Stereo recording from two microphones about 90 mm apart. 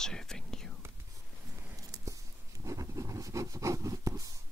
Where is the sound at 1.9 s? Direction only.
45° right (ahead or behind).